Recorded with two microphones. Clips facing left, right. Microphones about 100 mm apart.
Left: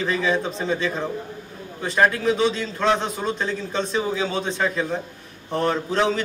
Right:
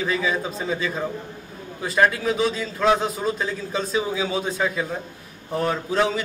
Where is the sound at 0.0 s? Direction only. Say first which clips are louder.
Left 2 dB; 5° right (ahead or behind).